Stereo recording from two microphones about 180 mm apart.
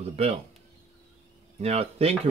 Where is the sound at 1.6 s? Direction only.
35° right (ahead or behind).